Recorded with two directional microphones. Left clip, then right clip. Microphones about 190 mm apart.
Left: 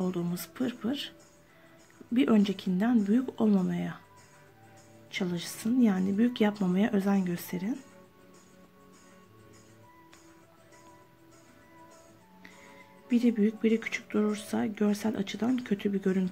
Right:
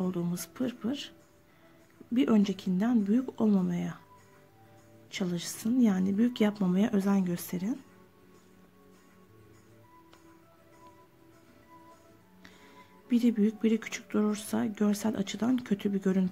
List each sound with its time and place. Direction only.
0.0 s speech: 10° right (ahead or behind)
2.1 s speech: 5° right (ahead or behind)
5.1 s speech: 15° right (ahead or behind)
13.1 s speech: 15° right (ahead or behind)